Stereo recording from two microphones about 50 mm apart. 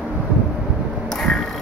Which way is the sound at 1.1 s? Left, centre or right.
Centre.